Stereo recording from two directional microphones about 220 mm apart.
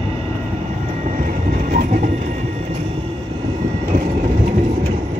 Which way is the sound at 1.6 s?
35° right (ahead or behind).